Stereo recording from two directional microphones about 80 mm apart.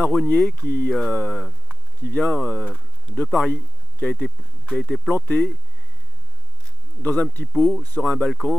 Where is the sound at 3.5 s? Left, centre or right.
Left.